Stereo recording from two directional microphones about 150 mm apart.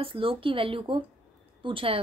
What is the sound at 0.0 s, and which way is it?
A woman's voice, 35° right (ahead or behind).